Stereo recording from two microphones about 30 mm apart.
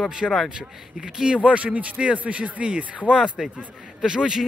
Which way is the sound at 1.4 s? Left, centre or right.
Right.